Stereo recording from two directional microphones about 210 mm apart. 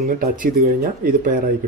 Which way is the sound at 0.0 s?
45° right (ahead or behind).